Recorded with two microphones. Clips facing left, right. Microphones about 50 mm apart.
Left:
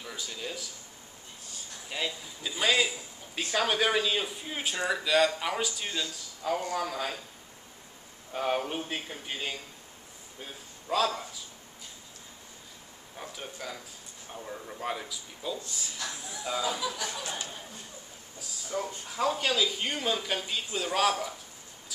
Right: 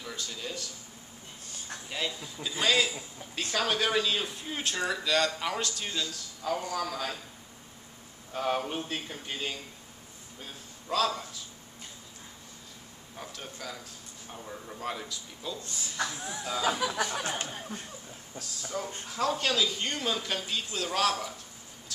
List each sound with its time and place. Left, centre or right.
0.0 s speech: centre
1.9 s speech: centre
8.3 s speech: centre
13.2 s speech: centre
15.6 s speech: right
18.4 s speech: centre